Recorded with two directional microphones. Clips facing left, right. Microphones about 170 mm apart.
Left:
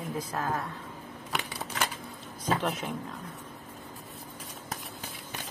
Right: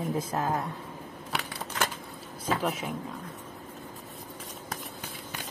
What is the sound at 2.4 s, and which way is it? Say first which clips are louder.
Speech: even; 5° right (ahead or behind).